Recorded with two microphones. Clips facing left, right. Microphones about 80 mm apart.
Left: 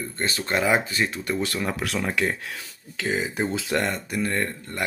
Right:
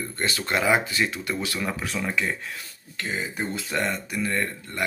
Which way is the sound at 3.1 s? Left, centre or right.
Left.